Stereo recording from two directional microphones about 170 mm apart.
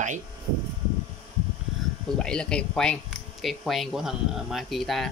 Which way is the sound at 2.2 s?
5° left (ahead or behind).